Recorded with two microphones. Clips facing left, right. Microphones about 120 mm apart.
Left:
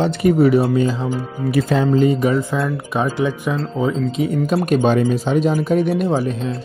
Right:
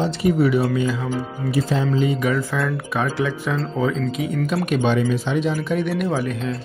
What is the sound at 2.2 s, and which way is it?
Speech, 25° left (ahead or behind).